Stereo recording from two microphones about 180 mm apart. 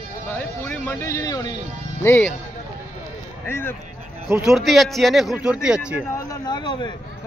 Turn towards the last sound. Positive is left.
turn(degrees=25)  # may be behind; listen again after turning